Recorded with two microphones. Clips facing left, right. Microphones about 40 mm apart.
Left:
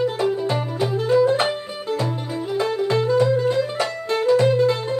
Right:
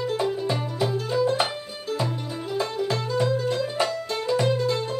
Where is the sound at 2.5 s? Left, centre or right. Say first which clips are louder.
Left 6 dB; left.